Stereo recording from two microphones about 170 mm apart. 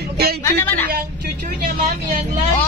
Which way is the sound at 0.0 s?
65° right (ahead or behind).